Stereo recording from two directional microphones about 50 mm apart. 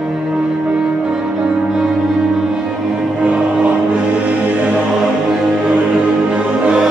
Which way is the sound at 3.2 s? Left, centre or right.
Centre.